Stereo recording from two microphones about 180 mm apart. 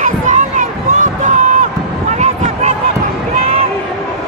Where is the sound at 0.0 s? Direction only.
45° right (ahead or behind).